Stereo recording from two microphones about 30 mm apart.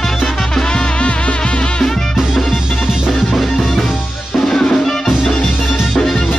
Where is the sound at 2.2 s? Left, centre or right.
Centre.